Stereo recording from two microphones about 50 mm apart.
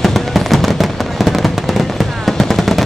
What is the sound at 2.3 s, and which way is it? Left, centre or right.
Machine gun, centre.